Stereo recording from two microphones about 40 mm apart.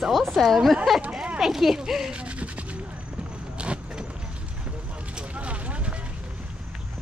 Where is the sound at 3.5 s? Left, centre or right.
Right.